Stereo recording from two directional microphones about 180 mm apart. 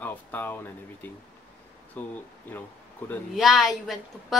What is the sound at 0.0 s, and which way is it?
Speech, 10° left (ahead or behind).